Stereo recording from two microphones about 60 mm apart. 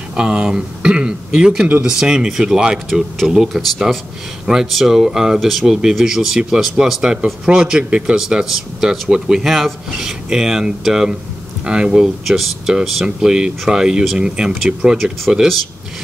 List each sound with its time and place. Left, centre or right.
0.1 s speech: centre